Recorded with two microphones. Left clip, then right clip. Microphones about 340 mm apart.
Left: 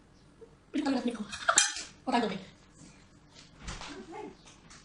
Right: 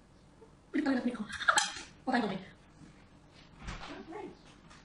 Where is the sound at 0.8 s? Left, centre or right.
Centre.